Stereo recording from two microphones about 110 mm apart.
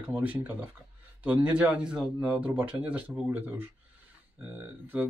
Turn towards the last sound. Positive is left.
turn(degrees=-20)  # may be behind; listen again after turning